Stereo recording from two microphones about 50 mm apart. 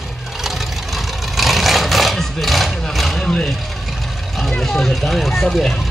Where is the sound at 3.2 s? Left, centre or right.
Centre.